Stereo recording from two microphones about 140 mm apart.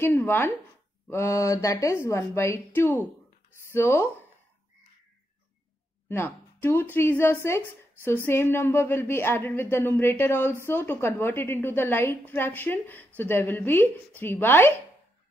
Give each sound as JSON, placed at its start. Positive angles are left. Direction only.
{"t": 0.0, "sound": "a woman's voice", "side_deg": 15}
{"t": 6.0, "sound": "a woman's voice", "side_deg": 15}